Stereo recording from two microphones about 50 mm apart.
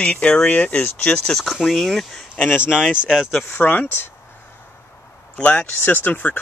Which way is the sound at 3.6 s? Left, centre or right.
Left.